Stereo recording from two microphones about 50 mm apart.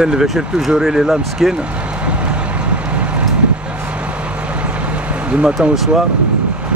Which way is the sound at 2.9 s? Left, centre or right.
Right.